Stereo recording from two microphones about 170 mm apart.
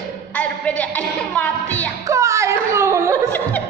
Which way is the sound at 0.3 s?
10° left (ahead or behind).